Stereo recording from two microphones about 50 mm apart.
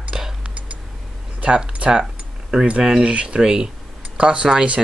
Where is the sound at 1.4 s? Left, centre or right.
Right.